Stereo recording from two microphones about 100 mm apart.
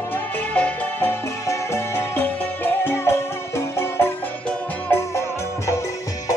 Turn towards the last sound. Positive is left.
turn(degrees=25)  # may be behind; listen again after turning